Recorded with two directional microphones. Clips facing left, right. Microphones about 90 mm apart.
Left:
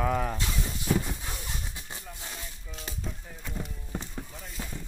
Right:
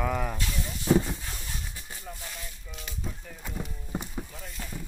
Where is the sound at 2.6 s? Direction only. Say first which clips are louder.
Left 2 dB; 35° left (ahead or behind).